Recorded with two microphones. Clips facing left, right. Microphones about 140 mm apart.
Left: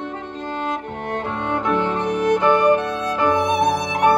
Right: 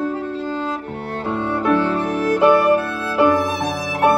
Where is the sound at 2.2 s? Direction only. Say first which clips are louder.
Right 2 dB; 5° right (ahead or behind).